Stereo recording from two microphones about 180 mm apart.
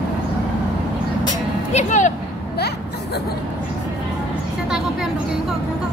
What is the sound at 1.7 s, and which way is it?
Speech, 40° left (ahead or behind).